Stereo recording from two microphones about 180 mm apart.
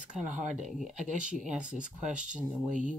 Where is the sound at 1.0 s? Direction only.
45° right (ahead or behind).